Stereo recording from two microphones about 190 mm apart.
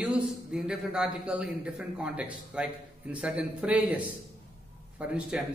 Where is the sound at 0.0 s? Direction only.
5° right (ahead or behind).